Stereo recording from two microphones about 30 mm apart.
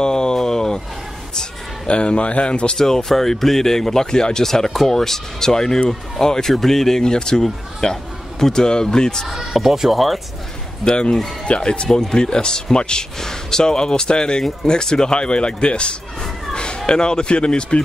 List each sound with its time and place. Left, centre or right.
0.0 s a sound: left
1.9 s speech: left
2.8 s speech: centre
9.3 s speech: centre
11.4 s speech: left
11.9 s speech: centre
13.2 s speech: centre